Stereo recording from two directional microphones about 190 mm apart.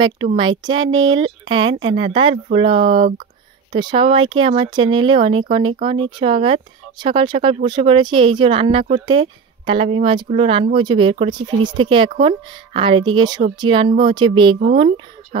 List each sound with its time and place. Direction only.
0.0 s speech: 25° right (ahead or behind)